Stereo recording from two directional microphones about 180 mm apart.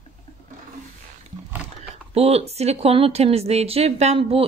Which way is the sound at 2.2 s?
35° right (ahead or behind).